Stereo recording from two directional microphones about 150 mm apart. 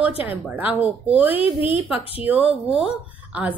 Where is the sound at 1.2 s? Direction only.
40° left (ahead or behind).